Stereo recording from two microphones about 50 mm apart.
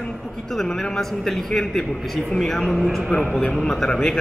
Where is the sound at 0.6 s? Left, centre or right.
Centre.